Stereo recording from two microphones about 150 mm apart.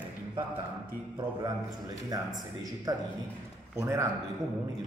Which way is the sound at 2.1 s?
25° right (ahead or behind).